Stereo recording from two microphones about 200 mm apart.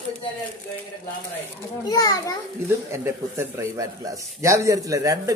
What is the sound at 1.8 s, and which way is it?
Speech, 20° left (ahead or behind).